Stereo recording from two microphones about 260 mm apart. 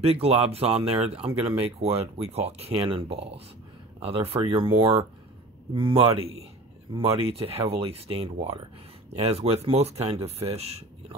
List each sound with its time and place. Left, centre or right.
0.0 s speech: right